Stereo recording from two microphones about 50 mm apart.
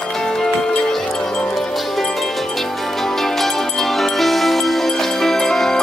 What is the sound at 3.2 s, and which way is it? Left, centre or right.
Music, centre.